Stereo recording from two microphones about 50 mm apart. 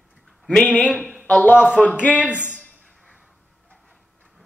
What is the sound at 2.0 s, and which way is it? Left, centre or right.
Speech, left.